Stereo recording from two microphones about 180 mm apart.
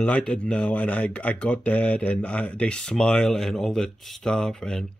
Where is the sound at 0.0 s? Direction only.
5° left (ahead or behind).